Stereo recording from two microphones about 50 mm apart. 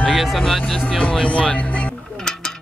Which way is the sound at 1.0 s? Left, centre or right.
Left.